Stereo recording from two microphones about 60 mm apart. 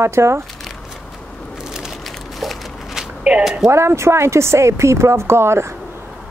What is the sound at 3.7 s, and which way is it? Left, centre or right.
Speech, right.